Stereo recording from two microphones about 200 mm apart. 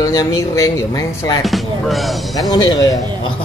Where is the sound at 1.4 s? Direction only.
Centre (ahead or behind).